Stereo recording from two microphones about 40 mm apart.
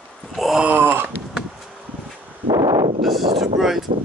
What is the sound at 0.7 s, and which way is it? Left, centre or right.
Wail, right.